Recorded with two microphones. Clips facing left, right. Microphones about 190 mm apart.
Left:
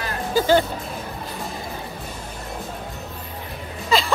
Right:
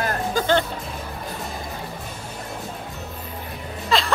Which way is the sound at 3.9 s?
Centre (ahead or behind).